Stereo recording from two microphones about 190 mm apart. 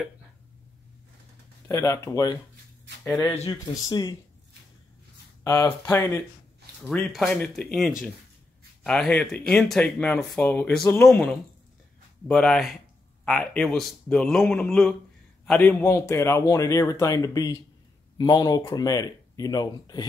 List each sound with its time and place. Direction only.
1.7 s a man's voice: 15° left (ahead or behind)
3.4 s speech: 20° left (ahead or behind)
5.4 s a man's voice: 15° left (ahead or behind)
12.3 s a man's voice: centre (ahead or behind); by 20.1 s 20° left (ahead or behind)